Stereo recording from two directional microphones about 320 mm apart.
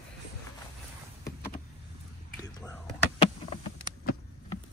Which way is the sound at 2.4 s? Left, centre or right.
Centre.